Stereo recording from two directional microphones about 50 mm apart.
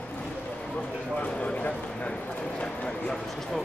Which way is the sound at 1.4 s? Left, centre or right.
Left.